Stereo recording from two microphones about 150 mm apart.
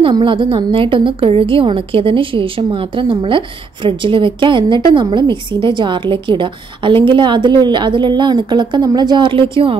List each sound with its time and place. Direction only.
0.0 s a woman's voice: 35° right (ahead or behind)